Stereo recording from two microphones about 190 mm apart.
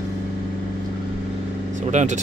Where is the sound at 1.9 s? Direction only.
40° right (ahead or behind).